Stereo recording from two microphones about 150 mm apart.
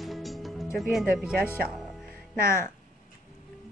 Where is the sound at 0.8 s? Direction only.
5° right (ahead or behind).